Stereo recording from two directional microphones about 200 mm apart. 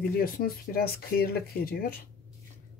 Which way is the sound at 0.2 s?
45° left (ahead or behind).